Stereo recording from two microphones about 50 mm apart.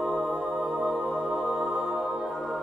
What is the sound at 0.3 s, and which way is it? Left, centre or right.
Music, centre.